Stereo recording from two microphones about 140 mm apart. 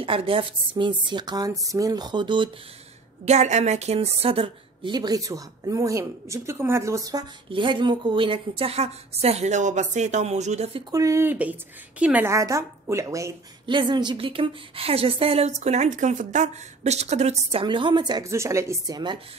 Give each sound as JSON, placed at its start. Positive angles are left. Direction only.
{"t": 0.0, "sound": "a woman's voice", "side_deg": -40}
{"t": 3.3, "sound": "a woman's voice", "side_deg": -55}
{"t": 7.4, "sound": "a woman's voice", "side_deg": -35}
{"t": 10.9, "sound": "a woman's voice", "side_deg": -20}
{"t": 12.3, "sound": "a woman's voice", "side_deg": -20}
{"t": 13.7, "sound": "a woman's voice", "side_deg": -35}